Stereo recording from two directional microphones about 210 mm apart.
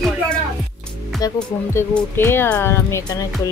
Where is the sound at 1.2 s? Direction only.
10° left (ahead or behind).